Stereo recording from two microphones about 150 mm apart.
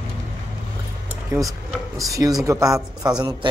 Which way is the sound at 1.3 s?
20° right (ahead or behind).